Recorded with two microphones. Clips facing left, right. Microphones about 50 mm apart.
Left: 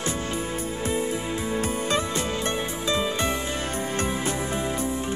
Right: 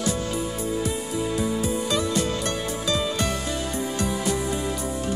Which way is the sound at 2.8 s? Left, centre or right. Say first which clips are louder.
Even; left.